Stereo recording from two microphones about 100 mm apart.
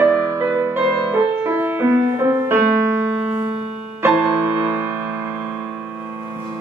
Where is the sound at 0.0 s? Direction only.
30° right (ahead or behind).